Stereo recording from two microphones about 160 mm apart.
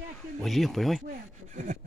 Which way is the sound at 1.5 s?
50° right (ahead or behind).